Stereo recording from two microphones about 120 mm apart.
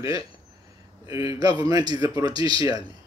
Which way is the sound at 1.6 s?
35° right (ahead or behind).